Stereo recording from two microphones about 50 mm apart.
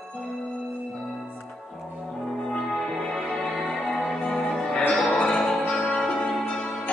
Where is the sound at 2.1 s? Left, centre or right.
Centre.